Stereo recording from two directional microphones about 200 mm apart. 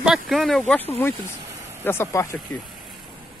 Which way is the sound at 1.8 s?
10° left (ahead or behind).